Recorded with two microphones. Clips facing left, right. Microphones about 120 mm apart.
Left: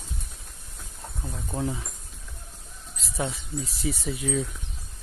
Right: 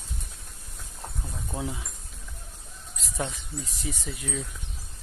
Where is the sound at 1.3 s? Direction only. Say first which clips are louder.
Left 4 dB; centre (ahead or behind).